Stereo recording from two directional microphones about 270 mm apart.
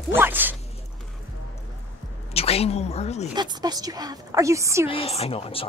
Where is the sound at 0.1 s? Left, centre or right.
Centre.